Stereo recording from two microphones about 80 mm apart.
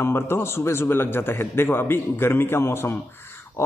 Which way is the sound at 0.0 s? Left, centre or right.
Left.